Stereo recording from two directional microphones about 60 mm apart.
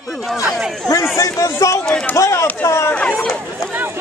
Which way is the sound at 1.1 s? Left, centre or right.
Left.